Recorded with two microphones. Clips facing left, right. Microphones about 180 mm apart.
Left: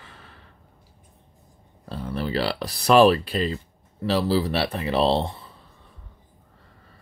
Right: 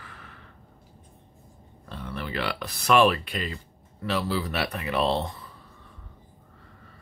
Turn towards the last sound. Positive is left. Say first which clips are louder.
# left 4 dB
turn(degrees=30)  # may be behind; listen again after turning